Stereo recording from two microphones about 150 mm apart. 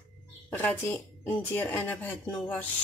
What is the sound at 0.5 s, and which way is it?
Speech, 15° left (ahead or behind).